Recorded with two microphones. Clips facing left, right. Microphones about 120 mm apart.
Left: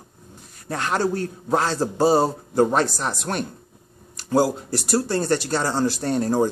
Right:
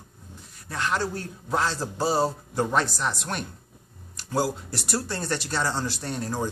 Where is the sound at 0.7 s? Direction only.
50° left (ahead or behind).